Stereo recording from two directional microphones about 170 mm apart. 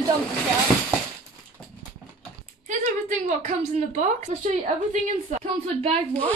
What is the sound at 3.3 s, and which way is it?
A woman's voice, 45° right (ahead or behind).